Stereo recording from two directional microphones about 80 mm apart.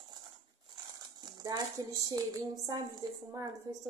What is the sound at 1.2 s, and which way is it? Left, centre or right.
Speech, right.